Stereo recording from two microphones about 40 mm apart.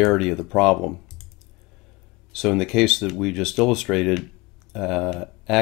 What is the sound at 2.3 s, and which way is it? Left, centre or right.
Speech, centre.